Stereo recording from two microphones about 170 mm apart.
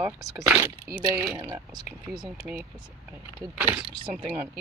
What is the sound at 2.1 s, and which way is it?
Speech, 5° right (ahead or behind).